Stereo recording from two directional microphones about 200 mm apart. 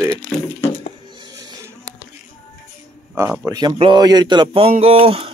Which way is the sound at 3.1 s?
5° right (ahead or behind).